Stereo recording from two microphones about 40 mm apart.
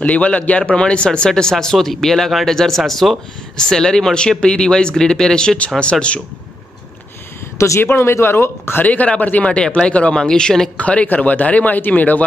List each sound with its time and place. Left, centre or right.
0.0 s speech: left
0.7 s speech: left; by 3.2 s centre
3.5 s speech: centre
5.8 s speech: left
7.8 s speech: left
8.8 s speech: left
10.1 s speech: centre
10.8 s speech: left